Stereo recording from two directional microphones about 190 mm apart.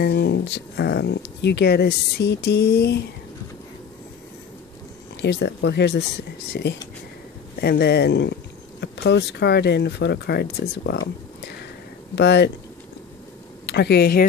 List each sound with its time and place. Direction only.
0.0 s speech: 60° left (ahead or behind)
5.2 s speech: 65° left (ahead or behind)
13.7 s speech: 60° left (ahead or behind)